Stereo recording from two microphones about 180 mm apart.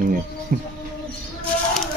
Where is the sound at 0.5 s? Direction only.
50° right (ahead or behind).